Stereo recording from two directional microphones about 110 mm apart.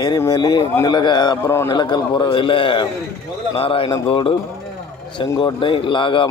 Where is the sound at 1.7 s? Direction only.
40° left (ahead or behind).